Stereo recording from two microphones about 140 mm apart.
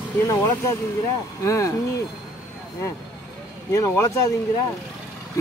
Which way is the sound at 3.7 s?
25° left (ahead or behind).